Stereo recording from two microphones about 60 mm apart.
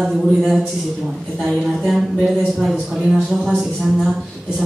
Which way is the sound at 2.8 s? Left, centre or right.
Centre.